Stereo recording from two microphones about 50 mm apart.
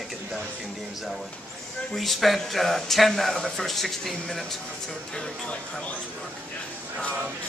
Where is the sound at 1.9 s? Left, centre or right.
Centre.